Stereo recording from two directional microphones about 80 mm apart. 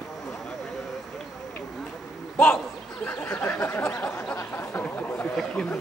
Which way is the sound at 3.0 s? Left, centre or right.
Left.